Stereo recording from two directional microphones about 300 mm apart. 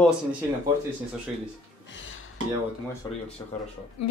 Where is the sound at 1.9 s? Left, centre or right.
Left.